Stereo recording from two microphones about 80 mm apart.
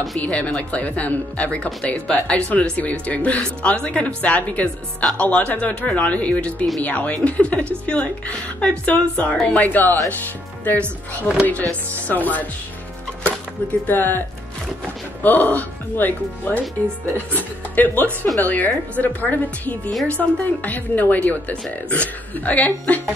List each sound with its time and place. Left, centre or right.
0.2 s speech: centre
13.8 s speech: left
15.2 s speech: centre